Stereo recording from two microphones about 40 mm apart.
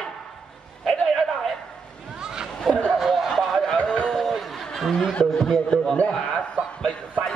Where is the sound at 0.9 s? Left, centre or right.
Centre.